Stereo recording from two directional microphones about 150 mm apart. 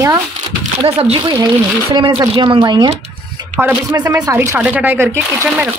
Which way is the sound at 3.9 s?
25° right (ahead or behind).